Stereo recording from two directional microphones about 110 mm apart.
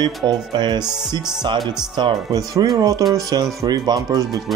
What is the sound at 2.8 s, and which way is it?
Speech, 35° right (ahead or behind).